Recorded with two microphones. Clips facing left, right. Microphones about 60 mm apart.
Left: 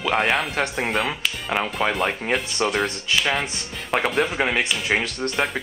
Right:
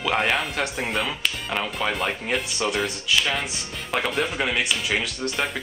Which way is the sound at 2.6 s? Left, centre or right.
Left.